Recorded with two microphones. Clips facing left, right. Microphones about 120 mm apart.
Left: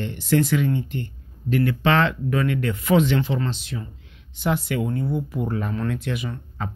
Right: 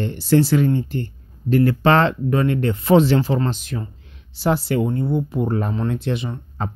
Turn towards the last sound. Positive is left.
turn(degrees=-30)  # may be behind; listen again after turning